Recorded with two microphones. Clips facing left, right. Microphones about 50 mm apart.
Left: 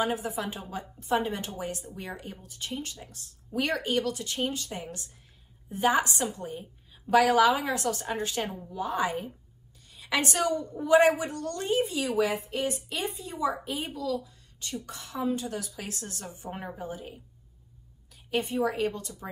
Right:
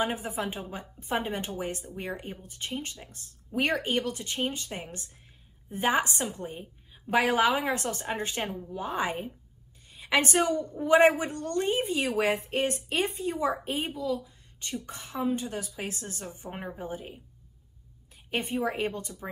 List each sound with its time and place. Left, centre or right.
0.0 s a woman's voice: right
8.5 s speech: centre
8.7 s a woman's voice: right
12.4 s a woman's voice: right
16.4 s a woman's voice: centre
16.7 s a woman's voice: right
18.3 s a woman's voice: right